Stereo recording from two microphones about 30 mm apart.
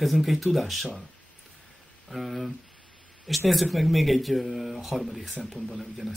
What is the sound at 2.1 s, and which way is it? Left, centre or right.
Speech, centre.